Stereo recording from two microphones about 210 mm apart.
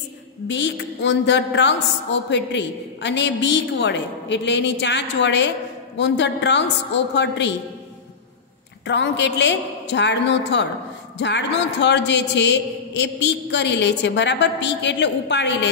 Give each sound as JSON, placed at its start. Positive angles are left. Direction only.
{"t": 0.5, "sound": "a woman's voice", "side_deg": 55}
{"t": 8.8, "sound": "a woman's voice", "side_deg": 55}